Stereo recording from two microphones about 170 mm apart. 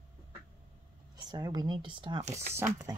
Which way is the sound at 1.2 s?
20° right (ahead or behind).